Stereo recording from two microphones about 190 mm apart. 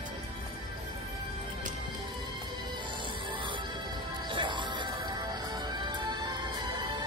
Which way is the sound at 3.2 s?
25° right (ahead or behind).